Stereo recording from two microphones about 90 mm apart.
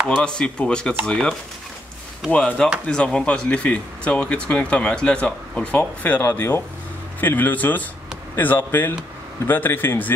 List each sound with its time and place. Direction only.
0.1 s speech: 10° left (ahead or behind)
2.3 s a man's voice: 10° left (ahead or behind)